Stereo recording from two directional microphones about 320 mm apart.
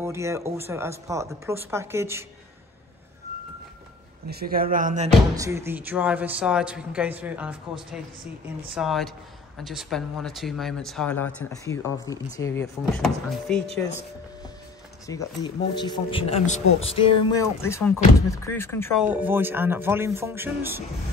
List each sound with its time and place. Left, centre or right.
0.0 s speech: centre
4.3 s speech: right
5.3 s speech: centre
15.0 s speech: centre
17.6 s speech: centre
19.0 s speech: centre